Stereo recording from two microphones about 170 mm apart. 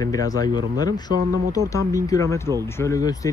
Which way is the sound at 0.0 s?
20° left (ahead or behind).